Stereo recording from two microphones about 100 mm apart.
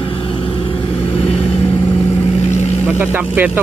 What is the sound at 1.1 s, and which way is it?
Vehicle, 65° left (ahead or behind).